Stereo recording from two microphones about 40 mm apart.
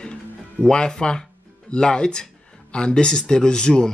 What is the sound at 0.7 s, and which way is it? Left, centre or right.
Speech, centre.